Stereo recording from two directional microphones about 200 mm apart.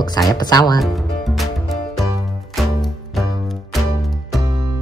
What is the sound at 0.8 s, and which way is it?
Music, centre (ahead or behind).